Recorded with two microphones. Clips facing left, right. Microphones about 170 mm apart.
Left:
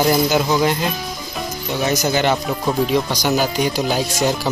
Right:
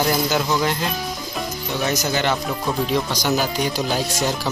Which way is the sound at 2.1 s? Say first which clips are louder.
Left 4 dB; 15° left (ahead or behind).